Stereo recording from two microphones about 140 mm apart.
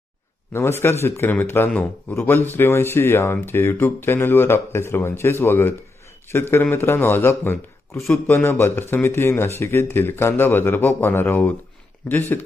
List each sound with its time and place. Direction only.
0.5 s speech: 20° left (ahead or behind)